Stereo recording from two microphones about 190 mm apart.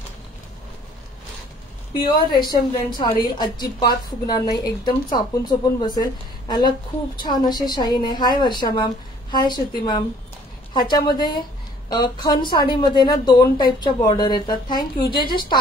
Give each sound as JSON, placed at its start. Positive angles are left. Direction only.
{"t": 2.0, "sound": "a woman's voice", "side_deg": 25}